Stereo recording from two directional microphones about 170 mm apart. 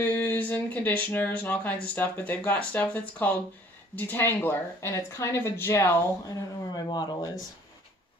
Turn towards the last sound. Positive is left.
turn(degrees=25)  # may be behind; listen again after turning